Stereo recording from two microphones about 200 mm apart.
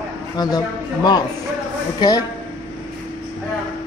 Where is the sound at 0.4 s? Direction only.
20° left (ahead or behind).